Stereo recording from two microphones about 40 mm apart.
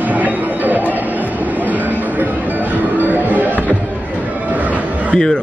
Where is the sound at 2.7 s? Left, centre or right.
Right.